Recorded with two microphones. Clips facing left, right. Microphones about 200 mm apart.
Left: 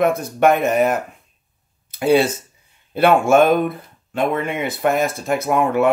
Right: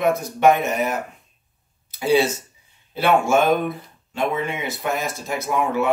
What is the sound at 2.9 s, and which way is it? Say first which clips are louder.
Speech: left 4 dB; 55° left (ahead or behind).